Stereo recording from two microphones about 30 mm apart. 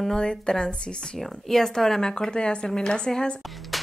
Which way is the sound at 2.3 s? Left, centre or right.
Left.